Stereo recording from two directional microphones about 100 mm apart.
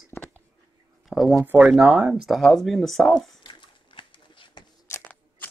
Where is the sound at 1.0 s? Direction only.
5° right (ahead or behind).